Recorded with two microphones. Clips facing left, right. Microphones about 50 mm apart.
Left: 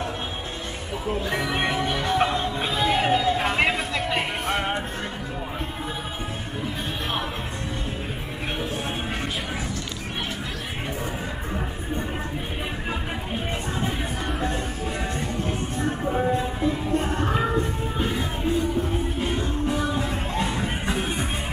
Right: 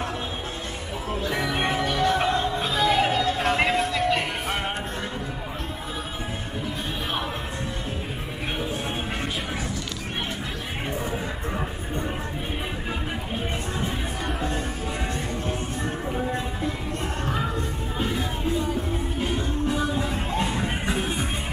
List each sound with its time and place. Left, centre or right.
1.0 s speech: centre
1.5 s music: centre
4.5 s music: centre
14.2 s music: centre
15.8 s music: left
19.4 s music: centre